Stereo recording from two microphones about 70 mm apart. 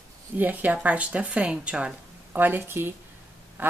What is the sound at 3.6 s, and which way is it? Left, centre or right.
Quack, right.